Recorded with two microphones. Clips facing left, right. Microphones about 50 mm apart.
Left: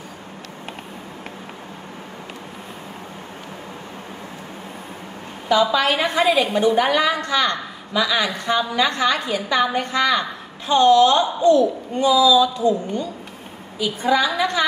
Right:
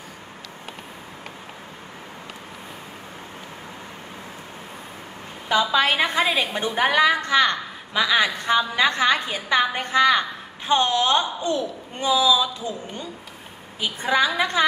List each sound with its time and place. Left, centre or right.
5.5 s a woman's voice: right
13.7 s a woman's voice: right